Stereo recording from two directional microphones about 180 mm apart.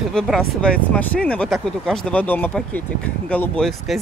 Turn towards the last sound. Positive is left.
turn(degrees=0)  # may be behind; listen again after turning